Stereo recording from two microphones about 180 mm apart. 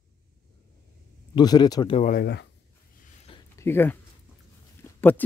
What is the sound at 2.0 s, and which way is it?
Speech, 55° left (ahead or behind).